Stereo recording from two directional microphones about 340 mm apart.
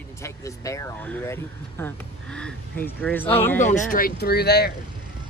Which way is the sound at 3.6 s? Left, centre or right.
Left.